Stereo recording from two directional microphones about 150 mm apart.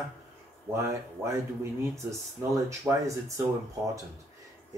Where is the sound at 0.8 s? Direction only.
20° right (ahead or behind).